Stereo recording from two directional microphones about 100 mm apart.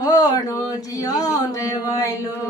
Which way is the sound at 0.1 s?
40° left (ahead or behind).